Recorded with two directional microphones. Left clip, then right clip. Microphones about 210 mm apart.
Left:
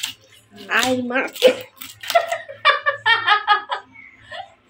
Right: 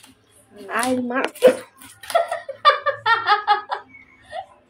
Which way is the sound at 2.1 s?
25° right (ahead or behind).